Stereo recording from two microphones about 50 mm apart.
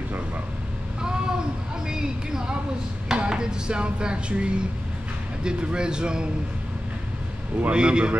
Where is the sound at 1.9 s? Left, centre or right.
Centre.